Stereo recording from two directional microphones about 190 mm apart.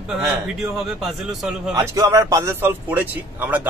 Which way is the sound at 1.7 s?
15° right (ahead or behind).